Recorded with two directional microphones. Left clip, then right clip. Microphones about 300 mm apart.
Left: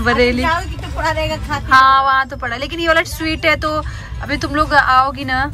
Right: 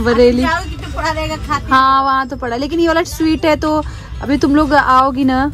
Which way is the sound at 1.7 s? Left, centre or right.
Centre.